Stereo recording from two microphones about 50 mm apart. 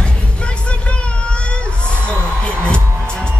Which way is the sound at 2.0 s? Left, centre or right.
Left.